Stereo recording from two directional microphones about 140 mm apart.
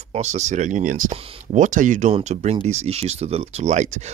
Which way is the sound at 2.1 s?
50° right (ahead or behind).